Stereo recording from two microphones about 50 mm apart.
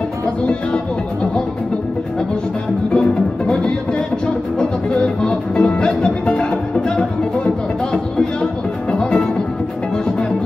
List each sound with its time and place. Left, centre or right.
2.9 s music: centre
7.9 s music: centre